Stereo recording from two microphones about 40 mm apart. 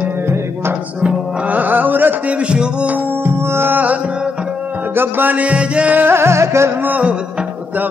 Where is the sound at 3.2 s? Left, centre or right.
Right.